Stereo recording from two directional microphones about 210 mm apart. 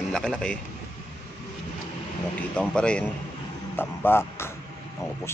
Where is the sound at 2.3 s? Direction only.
5° left (ahead or behind).